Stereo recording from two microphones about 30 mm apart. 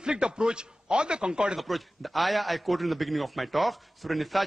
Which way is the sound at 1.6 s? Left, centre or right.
Centre.